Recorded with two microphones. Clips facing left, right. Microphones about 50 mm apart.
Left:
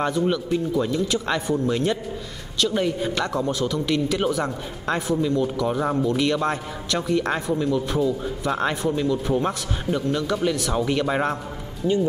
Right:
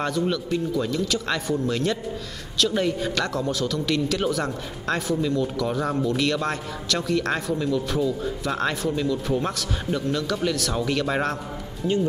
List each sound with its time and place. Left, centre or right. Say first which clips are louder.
0.3 s a man's voice: left 2 dB; centre
2.6 s a man's voice: left 1 dB; centre